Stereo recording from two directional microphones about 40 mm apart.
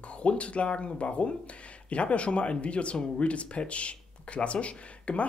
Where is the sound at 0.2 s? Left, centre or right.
Left.